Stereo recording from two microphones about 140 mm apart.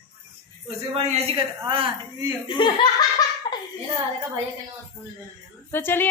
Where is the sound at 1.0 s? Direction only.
50° right (ahead or behind).